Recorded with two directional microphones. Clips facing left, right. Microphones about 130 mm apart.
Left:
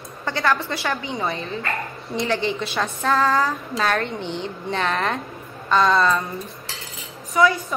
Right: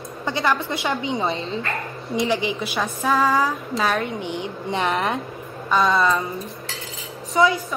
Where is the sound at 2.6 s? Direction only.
Centre (ahead or behind); by 5.2 s 20° right (ahead or behind).